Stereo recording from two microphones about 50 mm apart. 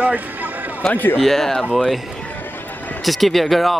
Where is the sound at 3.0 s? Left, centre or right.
Centre.